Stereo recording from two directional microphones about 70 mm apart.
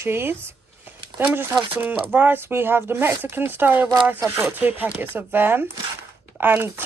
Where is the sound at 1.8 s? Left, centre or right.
Right.